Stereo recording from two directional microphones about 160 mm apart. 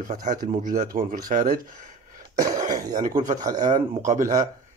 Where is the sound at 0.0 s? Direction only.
50° right (ahead or behind).